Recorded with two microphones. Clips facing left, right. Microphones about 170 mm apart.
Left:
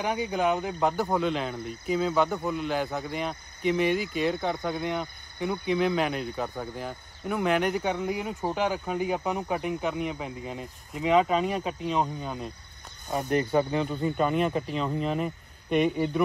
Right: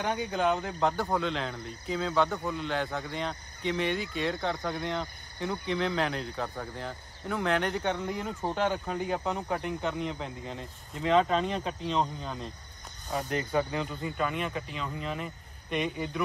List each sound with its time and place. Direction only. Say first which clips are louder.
0.0 s speech: left 2 dB; 10° left (ahead or behind)
13.3 s speech: left 9 dB; 40° left (ahead or behind)
13.6 s speech: left 2 dB; 25° left (ahead or behind)
14.0 s speech: left 8 dB; 40° left (ahead or behind)